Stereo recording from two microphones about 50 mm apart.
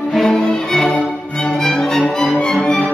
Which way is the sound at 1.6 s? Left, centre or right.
Centre.